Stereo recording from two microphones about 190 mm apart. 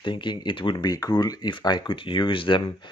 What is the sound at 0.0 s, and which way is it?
Speech, 25° left (ahead or behind).